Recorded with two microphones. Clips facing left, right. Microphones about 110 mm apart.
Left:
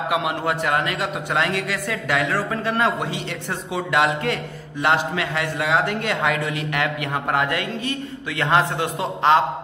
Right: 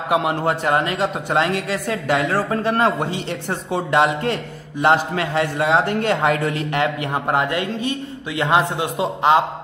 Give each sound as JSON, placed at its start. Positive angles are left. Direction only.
{"t": 0.1, "sound": "a man's voice", "side_deg": -35}